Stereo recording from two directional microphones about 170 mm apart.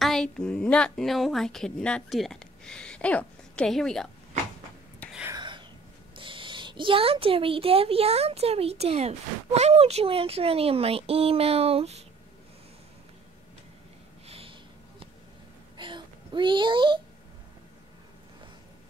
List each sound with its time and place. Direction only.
0.0 s a woman's voice: 5° left (ahead or behind)
5.3 s whispering: 25° right (ahead or behind)
6.1 s speech: 30° right (ahead or behind)
14.2 s sniff: 35° right (ahead or behind)
15.8 s a sound: 30° right (ahead or behind)